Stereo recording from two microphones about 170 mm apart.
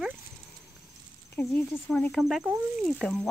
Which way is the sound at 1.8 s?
10° left (ahead or behind).